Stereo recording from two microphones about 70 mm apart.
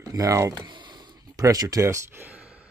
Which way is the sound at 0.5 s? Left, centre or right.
Right.